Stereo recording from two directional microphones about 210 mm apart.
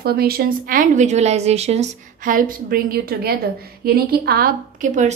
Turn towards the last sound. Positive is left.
turn(degrees=-35)  # may be behind; listen again after turning